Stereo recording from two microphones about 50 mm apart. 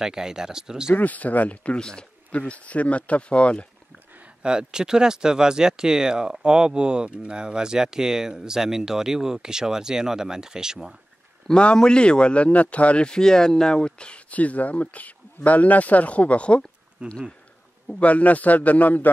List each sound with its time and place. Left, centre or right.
0.0 s speech: centre
0.9 s a man's voice: left
4.4 s speech: centre
11.4 s a man's voice: centre
17.0 s speech: right
17.8 s a man's voice: left